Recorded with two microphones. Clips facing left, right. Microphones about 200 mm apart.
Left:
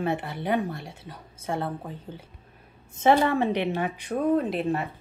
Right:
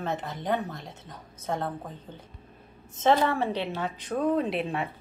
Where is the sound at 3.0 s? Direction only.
15° left (ahead or behind).